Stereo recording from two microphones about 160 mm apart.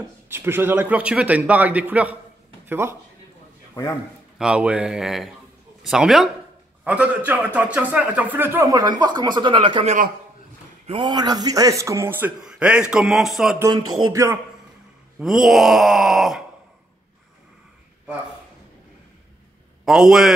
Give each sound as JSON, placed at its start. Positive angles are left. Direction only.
{"t": 0.3, "sound": "a man's voice", "side_deg": -15}
{"t": 4.4, "sound": "a man's voice", "side_deg": -5}
{"t": 13.6, "sound": "a man's voice", "side_deg": -20}
{"t": 15.1, "sound": "speech", "side_deg": -5}
{"t": 19.8, "sound": "speech", "side_deg": -5}